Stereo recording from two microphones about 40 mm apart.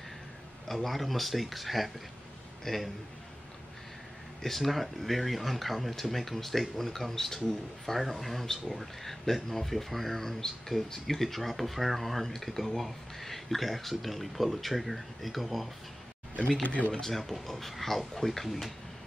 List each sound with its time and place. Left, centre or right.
0.7 s speech: centre
4.4 s speech: centre
16.6 s speech: left
17.0 s speech: centre